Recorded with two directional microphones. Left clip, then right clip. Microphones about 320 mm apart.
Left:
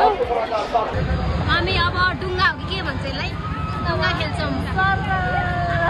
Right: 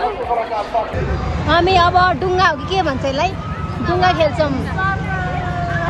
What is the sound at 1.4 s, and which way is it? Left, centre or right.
Speech, centre.